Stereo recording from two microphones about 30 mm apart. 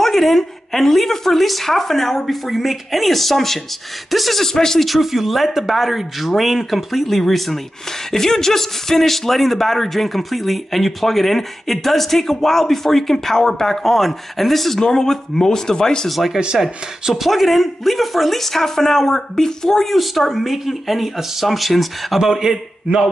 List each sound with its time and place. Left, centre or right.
0.0 s speech: centre
4.4 s speech: centre
4.7 s speech: centre; by 16.1 s left
16.1 s speech: centre
16.5 s speech: centre
17.2 s speech: centre
19.9 s speech: centre